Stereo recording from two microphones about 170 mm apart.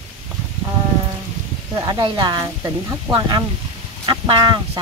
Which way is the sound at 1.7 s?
25° right (ahead or behind).